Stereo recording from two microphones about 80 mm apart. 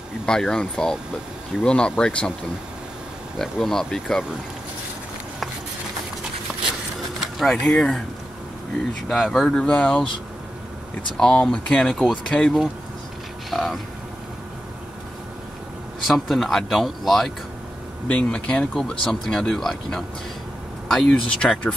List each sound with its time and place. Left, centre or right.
0.3 s speech: centre
3.3 s speech: centre
7.5 s speech: centre
9.1 s speech: centre
11.1 s speech: centre
11.9 s speech: centre
12.3 s speech: centre
13.5 s speech: centre
16.1 s speech: centre
18.0 s speech: centre